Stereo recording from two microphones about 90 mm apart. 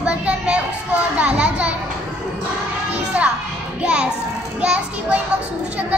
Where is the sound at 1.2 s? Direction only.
15° right (ahead or behind).